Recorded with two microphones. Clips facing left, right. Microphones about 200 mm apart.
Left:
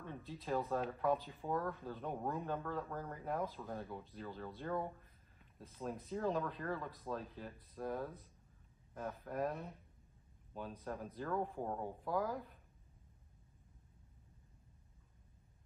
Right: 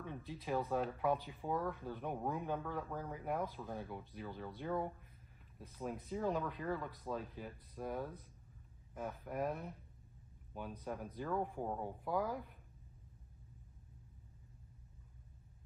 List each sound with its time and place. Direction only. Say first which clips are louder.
0.0 s speech: right 1 dB; 5° right (ahead or behind)
1.9 s speech: right 1 dB; 15° right (ahead or behind)
2.6 s speech: even; centre (ahead or behind)
4.1 s speech: even; 15° right (ahead or behind)
4.6 s speech: right 1 dB; centre (ahead or behind)
11.4 s speech: even; 15° right (ahead or behind)
11.7 s speech: even; centre (ahead or behind)